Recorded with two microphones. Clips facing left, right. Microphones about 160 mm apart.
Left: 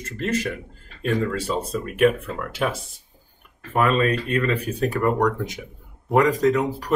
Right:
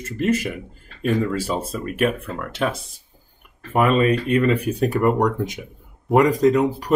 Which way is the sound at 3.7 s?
15° right (ahead or behind).